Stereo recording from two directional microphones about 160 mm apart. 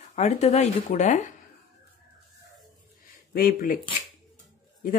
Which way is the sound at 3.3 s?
60° left (ahead or behind).